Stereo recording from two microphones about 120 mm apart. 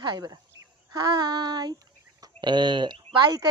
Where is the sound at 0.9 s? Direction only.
35° right (ahead or behind).